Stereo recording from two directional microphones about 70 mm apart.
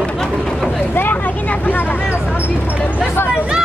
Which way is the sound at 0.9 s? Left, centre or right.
Left.